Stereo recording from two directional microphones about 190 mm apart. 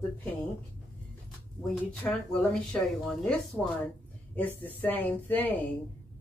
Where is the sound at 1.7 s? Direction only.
5° left (ahead or behind).